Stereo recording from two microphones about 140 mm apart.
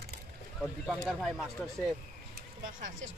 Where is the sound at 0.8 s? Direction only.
Centre (ahead or behind).